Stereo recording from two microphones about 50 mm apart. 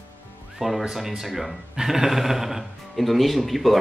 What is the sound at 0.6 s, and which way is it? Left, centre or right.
Speech, centre.